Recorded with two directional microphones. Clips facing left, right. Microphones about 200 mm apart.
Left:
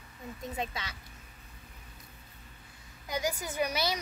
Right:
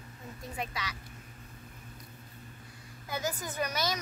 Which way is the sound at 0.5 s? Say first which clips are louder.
Even; 25° left (ahead or behind).